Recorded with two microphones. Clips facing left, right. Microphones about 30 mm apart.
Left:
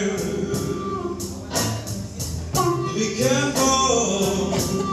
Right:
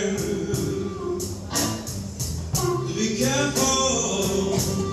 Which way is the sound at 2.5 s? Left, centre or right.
Left.